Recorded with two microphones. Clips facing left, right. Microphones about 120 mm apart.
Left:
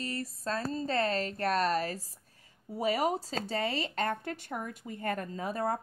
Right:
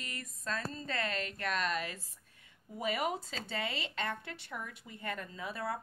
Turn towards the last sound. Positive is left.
turn(degrees=45)  # may be behind; listen again after turning